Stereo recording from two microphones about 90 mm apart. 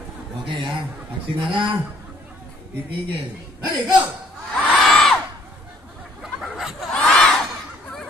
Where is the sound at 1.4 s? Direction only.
70° right (ahead or behind).